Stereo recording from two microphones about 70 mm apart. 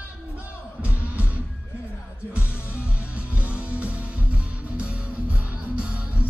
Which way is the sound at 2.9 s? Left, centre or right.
Centre.